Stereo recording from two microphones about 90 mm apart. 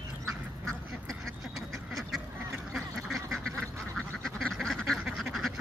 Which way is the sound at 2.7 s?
Centre (ahead or behind).